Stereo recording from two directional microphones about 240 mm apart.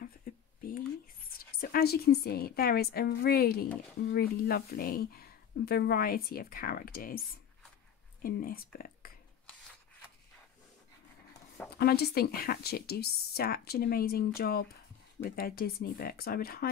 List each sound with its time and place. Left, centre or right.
0.0 s a sound: left
1.6 s speech: left
8.2 s speech: left
11.8 s speech: left